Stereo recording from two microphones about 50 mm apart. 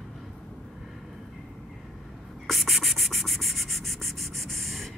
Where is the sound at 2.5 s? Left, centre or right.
Centre.